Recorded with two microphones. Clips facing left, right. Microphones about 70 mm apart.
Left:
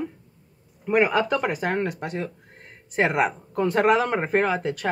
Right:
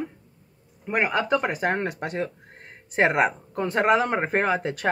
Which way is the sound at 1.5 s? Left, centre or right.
Right.